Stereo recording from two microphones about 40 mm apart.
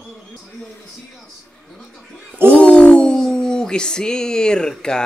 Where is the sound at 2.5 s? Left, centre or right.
Left.